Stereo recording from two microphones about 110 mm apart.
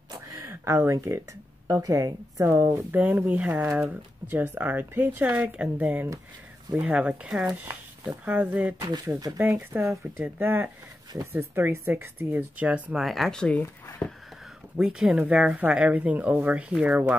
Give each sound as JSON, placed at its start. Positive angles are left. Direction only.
{"t": 0.4, "sound": "a sound", "side_deg": -25}
{"t": 0.9, "sound": "speech", "side_deg": -25}
{"t": 7.5, "sound": "speech", "side_deg": -25}
{"t": 8.3, "sound": "speech", "side_deg": -15}
{"t": 8.7, "sound": "speech", "side_deg": -30}
{"t": 9.7, "sound": "speech", "side_deg": -15}
{"t": 13.0, "sound": "speech", "side_deg": 0}
{"t": 14.4, "sound": "a sound", "side_deg": -5}
{"t": 15.1, "sound": "speech", "side_deg": -10}